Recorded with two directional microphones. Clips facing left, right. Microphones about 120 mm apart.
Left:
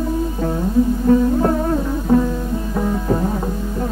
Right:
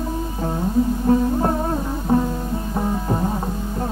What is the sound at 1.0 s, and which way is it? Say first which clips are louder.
Music: left 4 dB; 25° right (ahead or behind).